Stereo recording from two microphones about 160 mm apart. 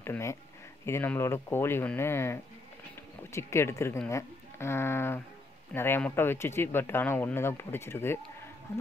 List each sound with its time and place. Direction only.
0.0 s speech: 15° left (ahead or behind)